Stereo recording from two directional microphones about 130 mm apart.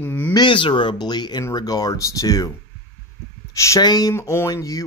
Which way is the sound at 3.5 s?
25° left (ahead or behind).